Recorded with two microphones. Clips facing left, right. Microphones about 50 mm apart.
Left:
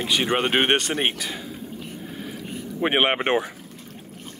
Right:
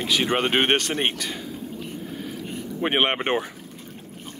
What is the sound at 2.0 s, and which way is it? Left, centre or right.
Vehicle, centre.